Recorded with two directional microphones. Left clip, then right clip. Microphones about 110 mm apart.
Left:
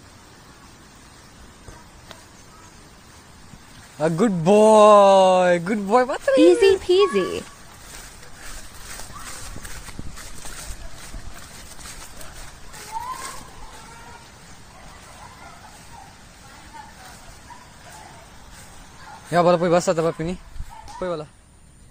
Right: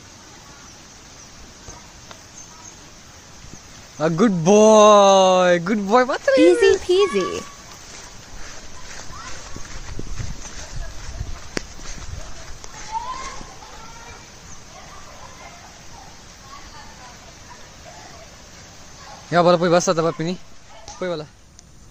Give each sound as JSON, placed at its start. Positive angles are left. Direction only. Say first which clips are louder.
{"t": 4.0, "sound": "speech", "louder": "right 2 dB", "side_deg": -20}
{"t": 6.3, "sound": "a child's voice", "louder": "even", "side_deg": 0}
{"t": 19.3, "sound": "speech", "louder": "right 2 dB", "side_deg": -20}